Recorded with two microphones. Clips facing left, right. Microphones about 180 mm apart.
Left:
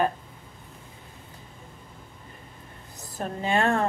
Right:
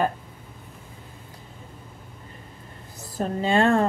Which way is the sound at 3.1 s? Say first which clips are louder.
Right 4 dB; 35° right (ahead or behind).